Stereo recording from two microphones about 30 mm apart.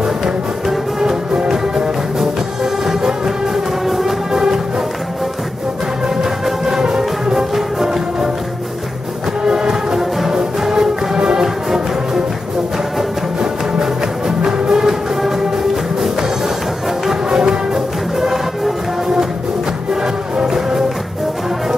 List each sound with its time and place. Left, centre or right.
0.2 s music: centre
3.8 s music: centre
4.3 s music: centre
6.0 s music: centre
9.4 s music: right
10.6 s music: centre
11.1 s music: right
11.4 s music: centre
14.2 s music: centre
17.3 s music: right
17.7 s music: centre
20.4 s music: centre